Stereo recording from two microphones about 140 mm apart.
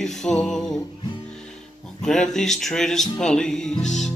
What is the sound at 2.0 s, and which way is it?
Speech, 5° left (ahead or behind).